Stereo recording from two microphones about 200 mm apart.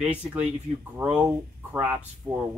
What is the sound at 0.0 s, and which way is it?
Speech, 5° right (ahead or behind).